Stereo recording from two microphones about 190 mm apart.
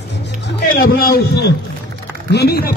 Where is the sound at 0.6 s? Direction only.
50° left (ahead or behind).